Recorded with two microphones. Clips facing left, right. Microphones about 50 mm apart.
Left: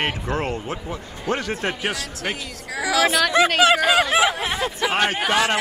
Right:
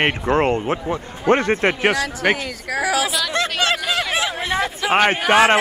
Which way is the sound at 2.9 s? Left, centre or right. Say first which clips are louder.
Left 2 dB; left.